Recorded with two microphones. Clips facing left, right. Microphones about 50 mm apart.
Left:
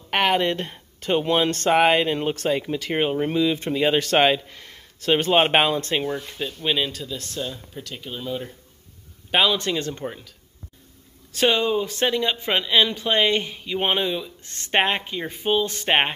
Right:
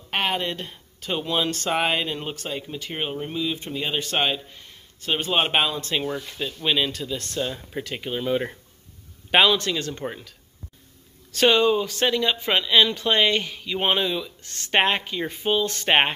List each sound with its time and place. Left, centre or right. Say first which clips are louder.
0.1 s speech: left 5 dB; left
2.3 s speech: left 8 dB; left
3.3 s speech: left 6 dB; left
5.3 s speech: left 3 dB; left
6.0 s speech: left 1 dB; centre
7.3 s speech: right 4 dB; right
9.7 s speech: left 2 dB; centre
10.0 s speech: even; centre
11.3 s speech: right 2 dB; centre
12.4 s speech: right 1 dB; centre
13.7 s speech: even; centre
14.2 s speech: even; left
14.9 s speech: right 1 dB; centre
15.9 s speech: right 1 dB; centre